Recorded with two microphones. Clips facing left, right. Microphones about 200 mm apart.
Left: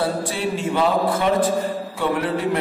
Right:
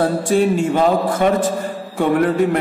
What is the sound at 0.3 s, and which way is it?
Speech, 45° right (ahead or behind).